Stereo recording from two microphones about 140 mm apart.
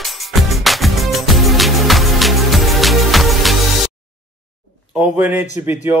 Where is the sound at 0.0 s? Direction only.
Centre (ahead or behind).